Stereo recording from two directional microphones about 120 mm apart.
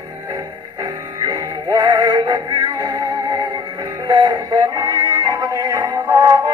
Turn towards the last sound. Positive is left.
turn(degrees=-35)  # may be behind; listen again after turning